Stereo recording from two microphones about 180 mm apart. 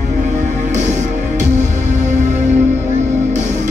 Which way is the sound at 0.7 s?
40° right (ahead or behind).